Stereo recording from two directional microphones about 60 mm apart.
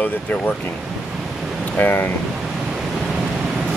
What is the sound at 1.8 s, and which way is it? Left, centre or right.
Speech, left.